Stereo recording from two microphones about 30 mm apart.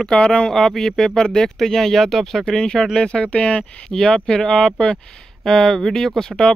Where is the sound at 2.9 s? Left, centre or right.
Left.